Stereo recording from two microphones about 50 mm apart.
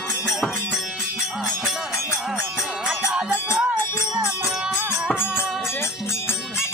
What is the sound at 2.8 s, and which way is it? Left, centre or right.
Music, centre.